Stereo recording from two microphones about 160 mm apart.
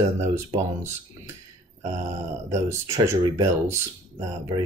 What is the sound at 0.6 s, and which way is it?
Speech, 15° right (ahead or behind).